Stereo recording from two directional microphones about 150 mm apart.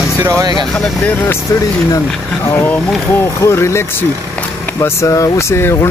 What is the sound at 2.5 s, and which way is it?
Speech, 15° left (ahead or behind).